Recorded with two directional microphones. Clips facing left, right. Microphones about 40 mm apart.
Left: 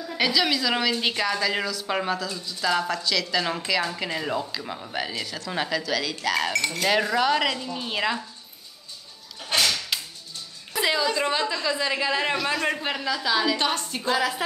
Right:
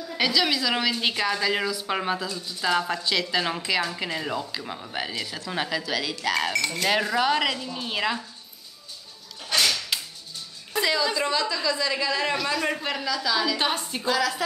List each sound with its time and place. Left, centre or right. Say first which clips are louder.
0.1 s a woman's voice: even; centre
2.9 s a woman's voice: even; centre
9.6 s whip: even; centre
10.8 s a woman's voice: left 1 dB; centre
12.5 s a man's voice: left 1 dB; centre
13.6 s speech: even; centre
14.0 s a man's voice: even; centre